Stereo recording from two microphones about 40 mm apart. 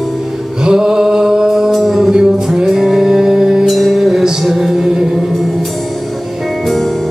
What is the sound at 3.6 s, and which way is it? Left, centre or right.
Music, centre.